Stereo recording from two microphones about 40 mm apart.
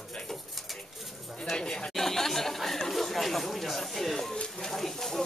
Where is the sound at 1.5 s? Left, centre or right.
Left.